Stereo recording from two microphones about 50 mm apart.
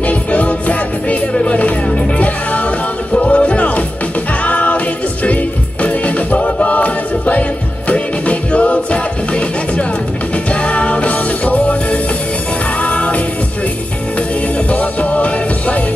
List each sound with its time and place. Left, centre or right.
0.0 s music: left
14.7 s music: left